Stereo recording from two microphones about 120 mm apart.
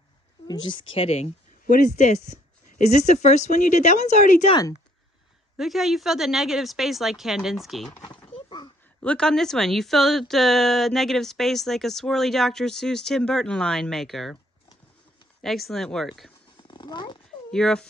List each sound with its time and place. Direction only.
0.5 s speech: 45° left (ahead or behind)
1.0 s speech: 65° left (ahead or behind)
1.8 s speech: 85° left
5.6 s speech: centre (ahead or behind)
8.1 s a sound: 40° left (ahead or behind)
9.0 s speech: 5° left (ahead or behind)
15.4 s speech: centre (ahead or behind)
16.5 s a sound: 40° left (ahead or behind)
17.5 s speech: 5° left (ahead or behind)